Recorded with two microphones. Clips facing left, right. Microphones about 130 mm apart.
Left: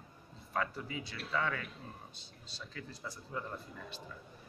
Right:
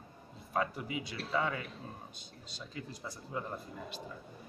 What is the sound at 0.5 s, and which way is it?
Speech, 15° right (ahead or behind).